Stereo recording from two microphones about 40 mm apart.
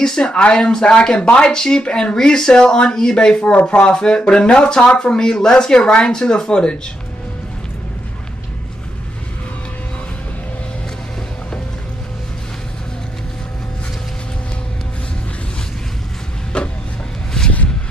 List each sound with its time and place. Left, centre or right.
0.0 s speech: centre
2.2 s speech: centre
16.5 s a sound: left